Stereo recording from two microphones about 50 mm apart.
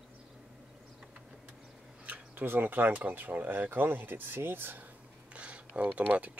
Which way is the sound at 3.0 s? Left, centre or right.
Right.